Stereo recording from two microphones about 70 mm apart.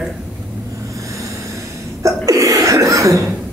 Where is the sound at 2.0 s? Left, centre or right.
Right.